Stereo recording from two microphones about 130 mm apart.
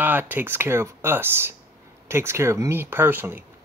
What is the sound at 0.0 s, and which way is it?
Speech, 15° right (ahead or behind).